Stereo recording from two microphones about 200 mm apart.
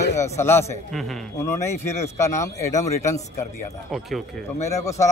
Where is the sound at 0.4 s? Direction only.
10° left (ahead or behind).